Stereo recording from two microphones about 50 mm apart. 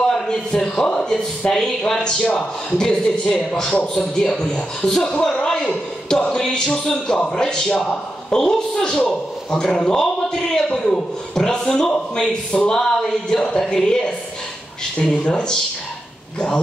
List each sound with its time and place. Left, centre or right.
0.0 s a man's voice: centre
15.2 s speech: left